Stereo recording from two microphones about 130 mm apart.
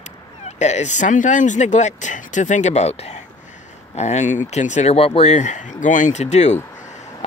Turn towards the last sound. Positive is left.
turn(degrees=60)  # may be behind; listen again after turning